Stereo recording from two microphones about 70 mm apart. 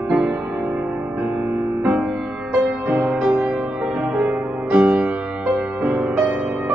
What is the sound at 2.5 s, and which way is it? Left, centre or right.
Music, right.